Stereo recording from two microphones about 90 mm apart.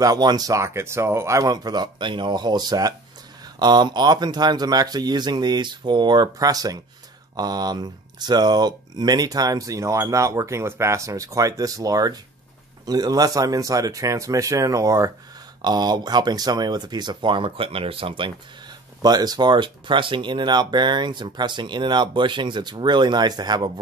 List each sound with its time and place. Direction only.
0.0 s speech: 45° right (ahead or behind)
1.5 s speech: 50° right (ahead or behind)
15.6 s speech: 50° right (ahead or behind); by 18.3 s 75° right (ahead or behind)
19.0 s speech: 50° right (ahead or behind)